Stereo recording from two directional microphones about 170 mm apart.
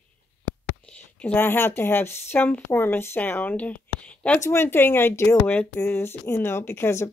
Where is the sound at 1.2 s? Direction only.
10° left (ahead or behind).